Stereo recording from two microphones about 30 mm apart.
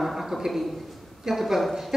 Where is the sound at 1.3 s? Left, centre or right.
Centre.